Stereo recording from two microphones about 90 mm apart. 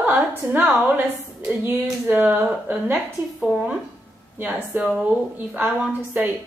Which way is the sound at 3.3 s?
Centre (ahead or behind).